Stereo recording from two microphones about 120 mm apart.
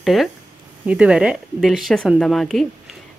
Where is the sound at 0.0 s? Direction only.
Centre (ahead or behind).